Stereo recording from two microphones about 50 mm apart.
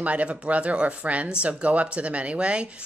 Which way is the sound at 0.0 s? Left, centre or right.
Right.